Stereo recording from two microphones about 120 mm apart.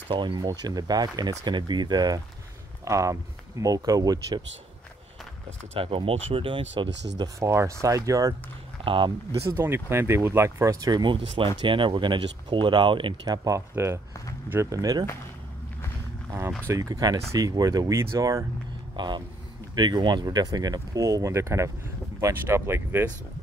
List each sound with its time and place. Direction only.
0.1 s speech: 40° right (ahead or behind)
5.8 s speech: 50° right (ahead or behind)
7.3 s speech: 25° right (ahead or behind)
8.8 s speech: 45° right (ahead or behind)
9.5 s speech: 20° right (ahead or behind)
16.3 s speech: 20° right (ahead or behind)